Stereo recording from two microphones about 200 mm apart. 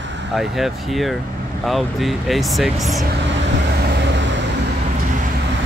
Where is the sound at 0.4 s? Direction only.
Centre (ahead or behind).